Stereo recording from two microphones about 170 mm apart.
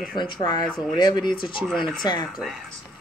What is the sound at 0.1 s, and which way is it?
Speech, 25° left (ahead or behind).